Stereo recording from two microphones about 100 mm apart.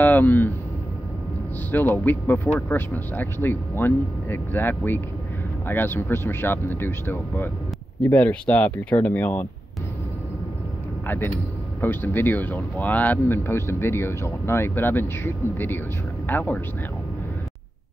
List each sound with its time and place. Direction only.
0.0 s speech: 15° left (ahead or behind)
1.7 s speech: 15° left (ahead or behind)
11.1 s speech: 20° left (ahead or behind)